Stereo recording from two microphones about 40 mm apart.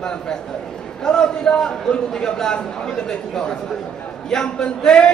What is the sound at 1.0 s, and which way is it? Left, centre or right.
A man's voice, left.